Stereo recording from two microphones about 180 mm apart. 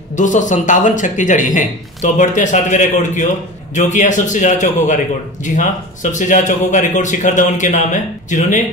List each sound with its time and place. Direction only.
0.1 s a man's voice: 45° left (ahead or behind)